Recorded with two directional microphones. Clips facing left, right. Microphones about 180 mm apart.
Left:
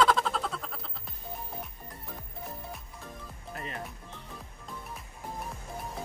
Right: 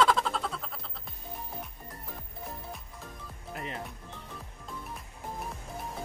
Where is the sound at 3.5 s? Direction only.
20° right (ahead or behind).